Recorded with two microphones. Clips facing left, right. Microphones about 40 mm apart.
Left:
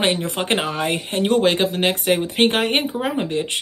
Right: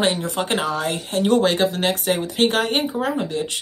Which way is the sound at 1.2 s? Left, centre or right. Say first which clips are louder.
Even; centre.